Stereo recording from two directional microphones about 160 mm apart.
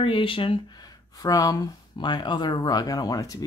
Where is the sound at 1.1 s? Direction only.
20° left (ahead or behind).